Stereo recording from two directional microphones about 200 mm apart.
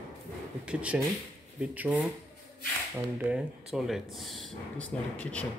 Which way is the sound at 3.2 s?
5° right (ahead or behind).